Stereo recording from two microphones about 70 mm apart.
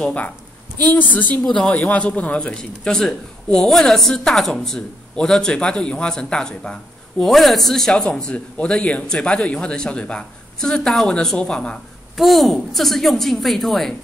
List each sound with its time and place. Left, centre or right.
0.0 s a woman's voice: left
1.4 s a man's voice: centre
1.7 s a man's voice: centre
12.2 s a woman's voice: centre